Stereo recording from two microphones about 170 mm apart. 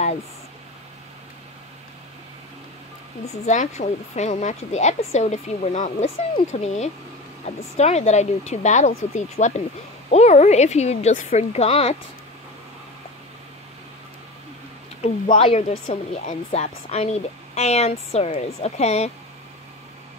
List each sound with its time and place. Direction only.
3.4 s a woman's voice: 45° left (ahead or behind)
15.3 s a woman's voice: 35° left (ahead or behind)